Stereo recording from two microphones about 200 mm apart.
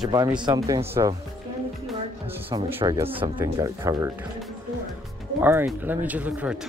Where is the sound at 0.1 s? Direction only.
20° right (ahead or behind).